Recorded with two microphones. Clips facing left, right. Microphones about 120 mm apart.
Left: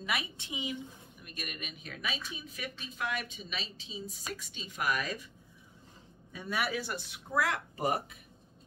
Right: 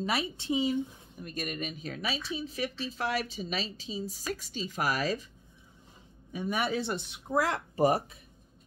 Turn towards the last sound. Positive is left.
turn(degrees=-30)  # may be behind; listen again after turning